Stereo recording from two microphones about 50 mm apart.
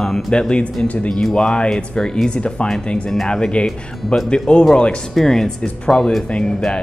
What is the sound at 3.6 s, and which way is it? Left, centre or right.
Speech, centre.